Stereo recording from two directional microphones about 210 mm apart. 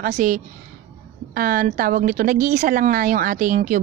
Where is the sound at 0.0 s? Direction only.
40° right (ahead or behind).